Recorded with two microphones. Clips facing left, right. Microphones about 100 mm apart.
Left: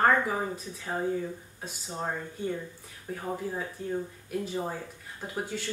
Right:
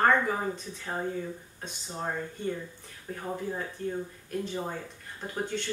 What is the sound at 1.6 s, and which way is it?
Speech, 5° left (ahead or behind).